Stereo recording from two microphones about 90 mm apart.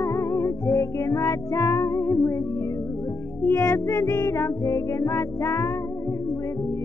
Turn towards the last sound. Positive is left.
turn(degrees=30)  # may be behind; listen again after turning